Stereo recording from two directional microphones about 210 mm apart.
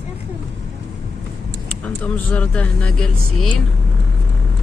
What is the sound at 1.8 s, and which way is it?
Speech, 5° left (ahead or behind).